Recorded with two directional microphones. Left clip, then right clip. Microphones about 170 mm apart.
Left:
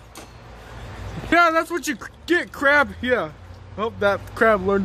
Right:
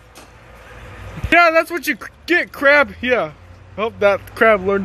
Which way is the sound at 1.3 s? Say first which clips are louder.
Right 5 dB; 10° right (ahead or behind).